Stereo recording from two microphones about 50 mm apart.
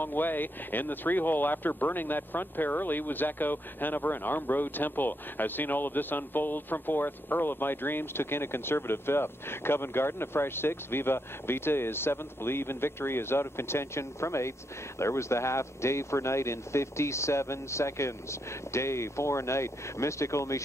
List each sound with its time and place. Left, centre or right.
0.0 s speech: left